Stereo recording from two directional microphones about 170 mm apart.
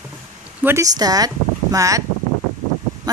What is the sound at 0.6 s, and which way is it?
Speech, 15° right (ahead or behind).